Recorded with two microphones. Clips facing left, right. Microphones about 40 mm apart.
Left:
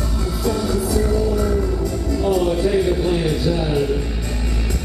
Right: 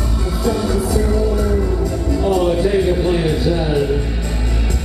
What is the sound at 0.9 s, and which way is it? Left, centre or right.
Music, centre.